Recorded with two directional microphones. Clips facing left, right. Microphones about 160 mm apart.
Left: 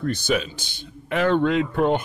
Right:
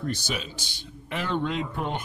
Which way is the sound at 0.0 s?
55° left (ahead or behind).